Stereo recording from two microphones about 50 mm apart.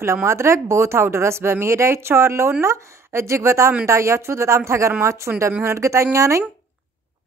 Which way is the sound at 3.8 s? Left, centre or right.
Right.